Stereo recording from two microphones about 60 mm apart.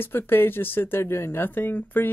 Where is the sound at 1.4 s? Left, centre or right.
Left.